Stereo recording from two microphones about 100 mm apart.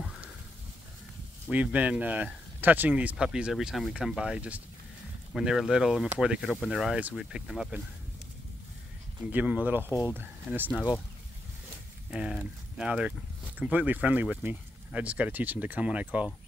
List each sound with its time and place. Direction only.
1.5 s speech: 15° right (ahead or behind)
9.3 s speech: 15° right (ahead or behind)
12.1 s speech: 5° right (ahead or behind)